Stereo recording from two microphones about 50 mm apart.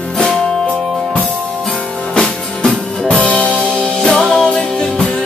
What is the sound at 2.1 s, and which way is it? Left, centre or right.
Music, centre.